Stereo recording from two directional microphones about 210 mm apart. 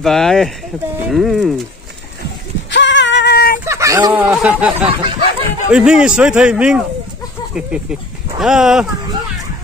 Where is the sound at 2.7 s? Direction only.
60° left (ahead or behind).